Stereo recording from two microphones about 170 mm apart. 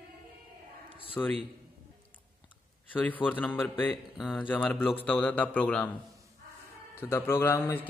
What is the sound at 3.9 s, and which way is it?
A man's voice, centre (ahead or behind).